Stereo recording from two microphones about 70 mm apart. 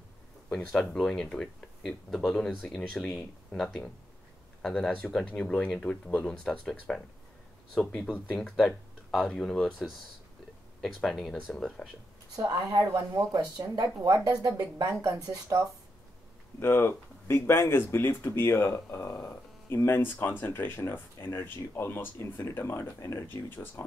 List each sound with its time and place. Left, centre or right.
0.5 s speech: centre
4.6 s speech: centre
8.4 s speech: centre
11.0 s speech: centre
12.6 s speech: right
16.5 s speech: left
22.9 s speech: left
23.2 s speech: left